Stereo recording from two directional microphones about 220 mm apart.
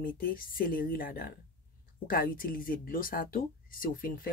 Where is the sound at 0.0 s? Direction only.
40° left (ahead or behind).